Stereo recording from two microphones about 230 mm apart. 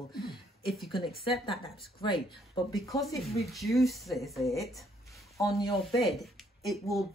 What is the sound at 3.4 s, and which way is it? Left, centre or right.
Speech, centre.